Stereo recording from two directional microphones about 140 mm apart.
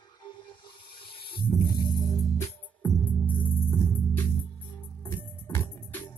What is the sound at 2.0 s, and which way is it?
Music, 20° left (ahead or behind).